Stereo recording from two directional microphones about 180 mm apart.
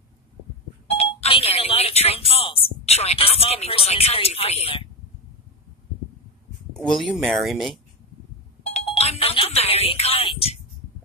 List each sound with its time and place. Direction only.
0.8 s speech: 35° left (ahead or behind)
6.8 s speech: centre (ahead or behind)
8.7 s a sound: 35° left (ahead or behind)